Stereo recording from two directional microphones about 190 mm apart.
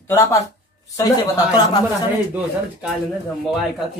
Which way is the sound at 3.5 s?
Centre (ahead or behind).